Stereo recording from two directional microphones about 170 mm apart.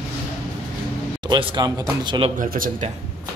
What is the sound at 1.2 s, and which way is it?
Speech, 30° right (ahead or behind).